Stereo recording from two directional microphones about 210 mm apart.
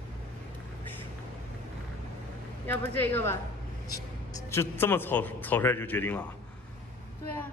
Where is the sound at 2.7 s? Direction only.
10° left (ahead or behind).